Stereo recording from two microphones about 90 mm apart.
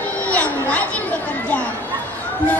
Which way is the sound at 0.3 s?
15° left (ahead or behind).